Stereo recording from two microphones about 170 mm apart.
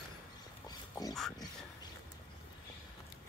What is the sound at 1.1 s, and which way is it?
Speech, centre (ahead or behind).